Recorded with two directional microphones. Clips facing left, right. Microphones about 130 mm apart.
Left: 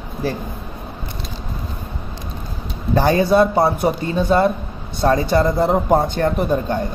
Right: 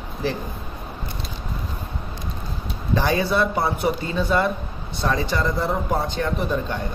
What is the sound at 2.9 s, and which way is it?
Speech, 40° left (ahead or behind).